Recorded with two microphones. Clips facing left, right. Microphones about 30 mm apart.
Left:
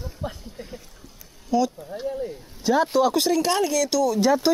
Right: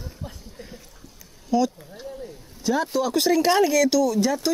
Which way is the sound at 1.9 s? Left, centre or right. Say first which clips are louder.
Left 8 dB; centre.